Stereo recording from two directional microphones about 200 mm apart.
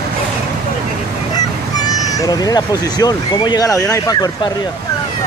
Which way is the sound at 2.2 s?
20° left (ahead or behind).